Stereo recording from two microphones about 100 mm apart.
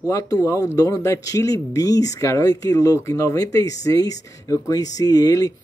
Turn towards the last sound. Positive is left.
turn(degrees=35)  # may be behind; listen again after turning